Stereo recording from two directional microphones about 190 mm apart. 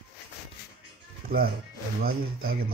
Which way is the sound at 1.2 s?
50° right (ahead or behind).